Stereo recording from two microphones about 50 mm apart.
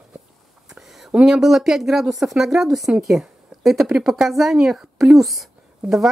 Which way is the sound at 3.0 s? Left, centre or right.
Centre.